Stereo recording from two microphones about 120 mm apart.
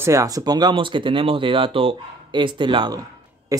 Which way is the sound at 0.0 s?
25° right (ahead or behind).